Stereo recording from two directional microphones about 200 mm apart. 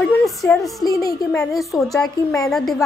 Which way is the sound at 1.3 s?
Centre (ahead or behind).